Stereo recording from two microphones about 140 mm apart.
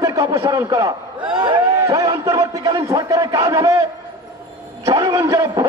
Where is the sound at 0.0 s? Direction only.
25° right (ahead or behind).